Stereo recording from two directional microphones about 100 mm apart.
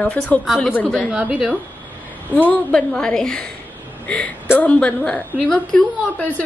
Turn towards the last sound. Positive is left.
turn(degrees=15)  # may be behind; listen again after turning